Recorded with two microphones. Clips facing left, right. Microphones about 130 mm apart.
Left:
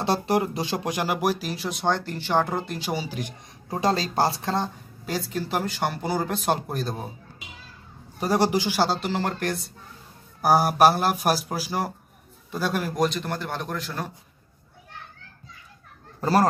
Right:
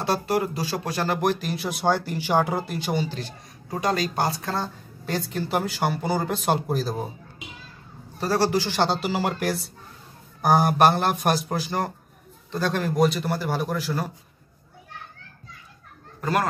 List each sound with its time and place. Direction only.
0.0 s speech: 25° left (ahead or behind)
3.8 s speech: 30° left (ahead or behind)
5.0 s speech: centre (ahead or behind)
8.2 s a man's voice: 15° left (ahead or behind)
12.9 s speech: 5° right (ahead or behind)
16.2 s speech: 35° left (ahead or behind)